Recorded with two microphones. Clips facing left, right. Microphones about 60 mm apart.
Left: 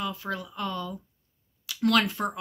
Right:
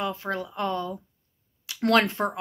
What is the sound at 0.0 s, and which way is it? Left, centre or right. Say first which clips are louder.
Speech: right 3 dB; right.